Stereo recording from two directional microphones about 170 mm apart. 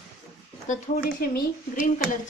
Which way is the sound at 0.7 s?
50° left (ahead or behind).